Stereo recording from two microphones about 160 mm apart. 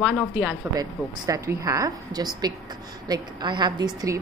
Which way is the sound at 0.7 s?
20° right (ahead or behind).